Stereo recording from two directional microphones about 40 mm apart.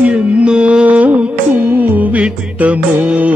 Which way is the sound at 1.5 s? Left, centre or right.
Right.